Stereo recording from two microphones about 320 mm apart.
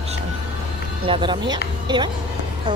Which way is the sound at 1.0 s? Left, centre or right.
Centre.